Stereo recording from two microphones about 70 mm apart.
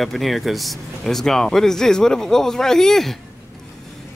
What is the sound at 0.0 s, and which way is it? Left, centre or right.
Speech, centre.